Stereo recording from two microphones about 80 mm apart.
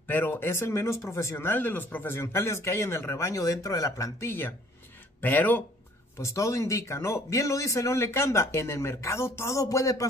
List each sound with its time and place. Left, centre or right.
0.0 s speech: left
6.1 s speech: left